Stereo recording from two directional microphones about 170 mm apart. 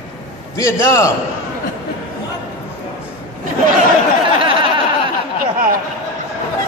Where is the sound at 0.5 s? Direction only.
15° left (ahead or behind).